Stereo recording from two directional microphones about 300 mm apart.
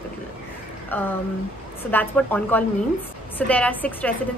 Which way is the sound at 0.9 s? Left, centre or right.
Centre.